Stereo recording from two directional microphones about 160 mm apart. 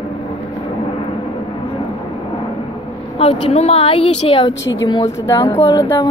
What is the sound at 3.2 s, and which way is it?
A woman's voice, 40° left (ahead or behind).